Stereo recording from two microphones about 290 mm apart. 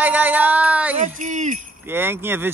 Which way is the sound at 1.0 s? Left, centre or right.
Right.